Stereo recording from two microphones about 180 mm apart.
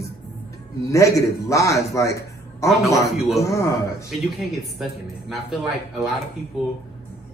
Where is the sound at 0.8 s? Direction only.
15° left (ahead or behind).